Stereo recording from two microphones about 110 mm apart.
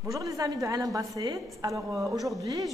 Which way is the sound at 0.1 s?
30° right (ahead or behind).